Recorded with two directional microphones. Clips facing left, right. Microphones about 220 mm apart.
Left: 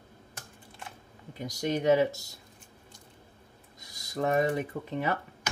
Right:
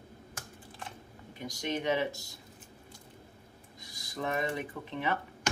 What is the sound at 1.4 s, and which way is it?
Speech, 40° left (ahead or behind).